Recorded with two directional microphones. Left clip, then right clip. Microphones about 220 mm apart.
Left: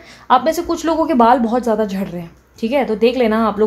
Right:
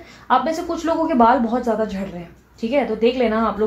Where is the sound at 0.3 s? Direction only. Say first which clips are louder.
Left 4 dB; 45° left (ahead or behind).